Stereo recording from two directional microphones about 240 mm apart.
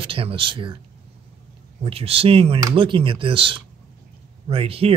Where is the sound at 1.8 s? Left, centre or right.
Right.